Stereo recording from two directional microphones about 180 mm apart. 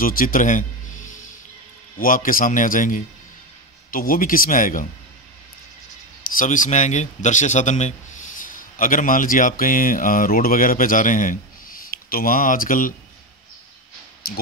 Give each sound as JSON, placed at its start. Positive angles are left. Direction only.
{"t": 0.0, "sound": "a man's voice", "side_deg": 50}
{"t": 2.0, "sound": "a man's voice", "side_deg": 50}
{"t": 6.2, "sound": "a man's voice", "side_deg": 50}